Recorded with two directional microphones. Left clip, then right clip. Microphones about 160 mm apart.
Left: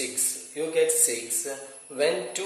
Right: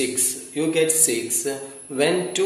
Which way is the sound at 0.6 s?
15° left (ahead or behind).